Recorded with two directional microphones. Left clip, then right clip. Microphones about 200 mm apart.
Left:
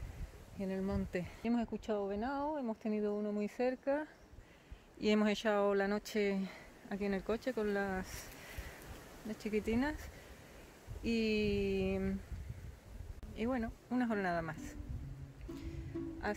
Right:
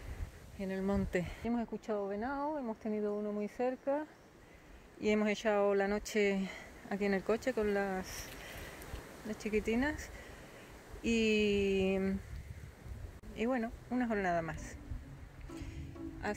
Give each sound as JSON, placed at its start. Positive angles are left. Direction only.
{"t": 0.6, "sound": "speech", "side_deg": -5}
{"t": 1.4, "sound": "speech", "side_deg": 25}
{"t": 9.3, "sound": "speech", "side_deg": 10}
{"t": 11.1, "sound": "speech", "side_deg": 0}
{"t": 13.4, "sound": "speech", "side_deg": 5}
{"t": 16.3, "sound": "speech", "side_deg": 0}